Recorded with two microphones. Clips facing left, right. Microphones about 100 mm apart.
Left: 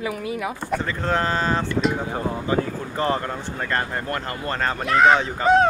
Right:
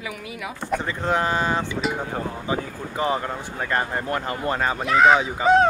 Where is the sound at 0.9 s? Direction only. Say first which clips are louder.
Right 1 dB; 15° right (ahead or behind).